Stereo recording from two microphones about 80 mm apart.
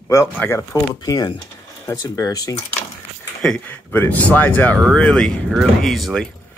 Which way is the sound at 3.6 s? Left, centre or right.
Left.